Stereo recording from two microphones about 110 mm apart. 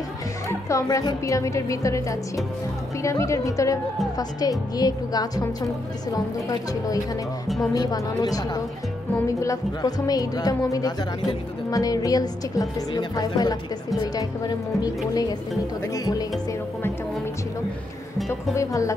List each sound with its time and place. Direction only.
0.5 s a woman's voice: 30° left (ahead or behind)
7.7 s a woman's voice: 35° left (ahead or behind)
18.5 s a woman's voice: 30° left (ahead or behind)